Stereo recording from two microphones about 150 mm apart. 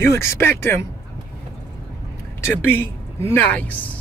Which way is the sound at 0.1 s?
15° left (ahead or behind).